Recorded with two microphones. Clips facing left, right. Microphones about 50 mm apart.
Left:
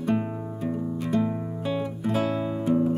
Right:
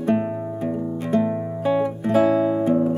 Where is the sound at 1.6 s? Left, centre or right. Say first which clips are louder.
Right 9 dB; centre.